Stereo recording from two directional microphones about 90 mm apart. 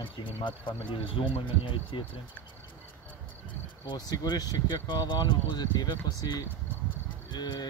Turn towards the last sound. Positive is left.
turn(degrees=55)  # may be behind; listen again after turning